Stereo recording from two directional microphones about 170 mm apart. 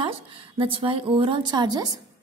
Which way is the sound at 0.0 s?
30° right (ahead or behind).